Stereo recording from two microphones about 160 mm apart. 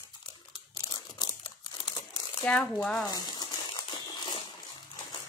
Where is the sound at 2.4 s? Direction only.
10° left (ahead or behind).